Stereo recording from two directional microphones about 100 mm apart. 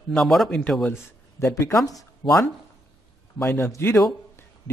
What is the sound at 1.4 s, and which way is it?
Speech, 30° left (ahead or behind).